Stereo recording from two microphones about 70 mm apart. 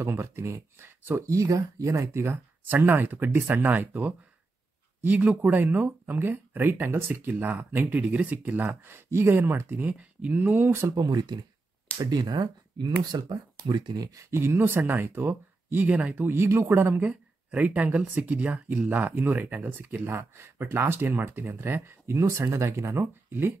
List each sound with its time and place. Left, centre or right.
0.0 s speech: right
1.2 s speech: right
2.7 s speech: right
11.0 s speech: right
12.0 s speech: right
14.1 s speech: right